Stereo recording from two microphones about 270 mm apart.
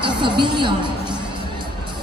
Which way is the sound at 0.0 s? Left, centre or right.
Centre.